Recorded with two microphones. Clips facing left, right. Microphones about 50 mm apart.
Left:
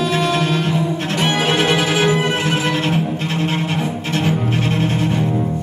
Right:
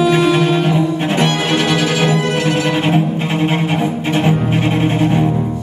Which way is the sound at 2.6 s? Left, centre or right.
Centre.